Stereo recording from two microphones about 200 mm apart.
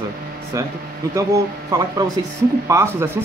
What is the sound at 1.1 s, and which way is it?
Speech, 15° right (ahead or behind).